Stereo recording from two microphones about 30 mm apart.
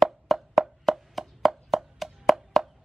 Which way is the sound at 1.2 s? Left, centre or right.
Centre.